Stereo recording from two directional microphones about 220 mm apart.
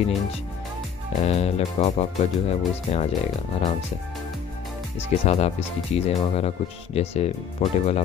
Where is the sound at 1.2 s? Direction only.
30° left (ahead or behind).